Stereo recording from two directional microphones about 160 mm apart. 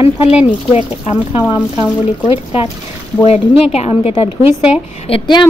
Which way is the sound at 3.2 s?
35° left (ahead or behind).